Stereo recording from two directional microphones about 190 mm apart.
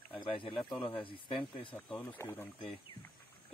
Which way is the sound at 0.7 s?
25° left (ahead or behind).